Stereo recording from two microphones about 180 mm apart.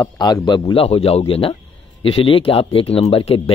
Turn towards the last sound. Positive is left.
turn(degrees=30)  # may be behind; listen again after turning